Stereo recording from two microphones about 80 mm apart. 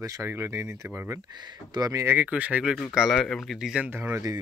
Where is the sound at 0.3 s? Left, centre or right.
Right.